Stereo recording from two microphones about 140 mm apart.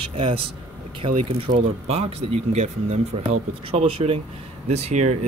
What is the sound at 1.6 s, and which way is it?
Speech, 45° right (ahead or behind).